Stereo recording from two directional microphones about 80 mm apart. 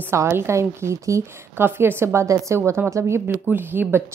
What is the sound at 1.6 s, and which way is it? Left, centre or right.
A woman's voice, right.